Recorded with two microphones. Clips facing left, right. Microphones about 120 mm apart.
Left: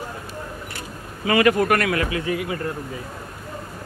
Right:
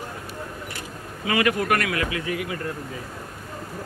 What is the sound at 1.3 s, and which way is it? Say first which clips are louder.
Speech: left 4 dB; 45° left (ahead or behind).